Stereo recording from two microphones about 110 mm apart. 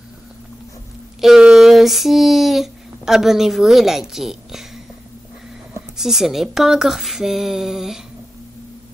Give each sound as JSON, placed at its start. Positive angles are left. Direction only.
{"t": 1.2, "sound": "child singing", "side_deg": -5}
{"t": 5.9, "sound": "speech", "side_deg": -5}